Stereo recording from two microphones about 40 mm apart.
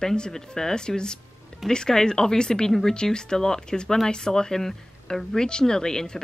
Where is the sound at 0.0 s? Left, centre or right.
Centre.